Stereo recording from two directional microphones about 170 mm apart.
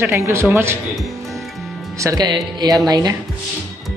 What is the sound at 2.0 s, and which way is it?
Speech, 20° right (ahead or behind).